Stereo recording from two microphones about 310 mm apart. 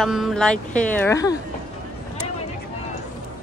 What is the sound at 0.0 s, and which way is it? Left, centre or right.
Speech, centre.